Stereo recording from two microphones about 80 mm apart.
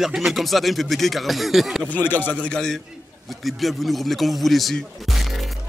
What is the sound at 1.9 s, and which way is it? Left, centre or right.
Speech, left.